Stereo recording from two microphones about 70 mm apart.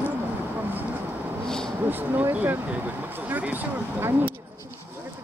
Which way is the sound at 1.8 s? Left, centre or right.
Right.